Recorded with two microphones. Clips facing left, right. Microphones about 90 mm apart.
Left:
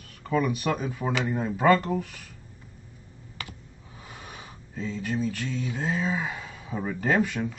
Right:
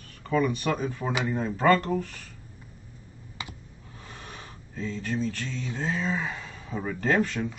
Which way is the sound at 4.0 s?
10° left (ahead or behind).